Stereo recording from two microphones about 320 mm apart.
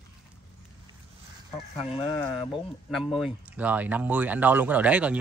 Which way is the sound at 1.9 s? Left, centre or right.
Centre.